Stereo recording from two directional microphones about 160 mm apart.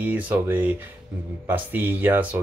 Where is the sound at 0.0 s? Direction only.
10° right (ahead or behind).